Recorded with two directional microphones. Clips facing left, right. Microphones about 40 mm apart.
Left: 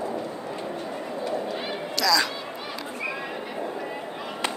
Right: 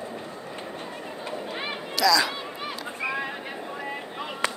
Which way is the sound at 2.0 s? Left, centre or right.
Centre.